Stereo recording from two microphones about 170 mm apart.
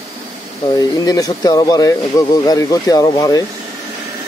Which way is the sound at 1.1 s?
25° left (ahead or behind).